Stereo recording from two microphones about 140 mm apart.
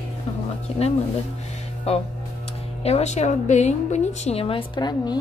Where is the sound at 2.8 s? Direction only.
50° left (ahead or behind).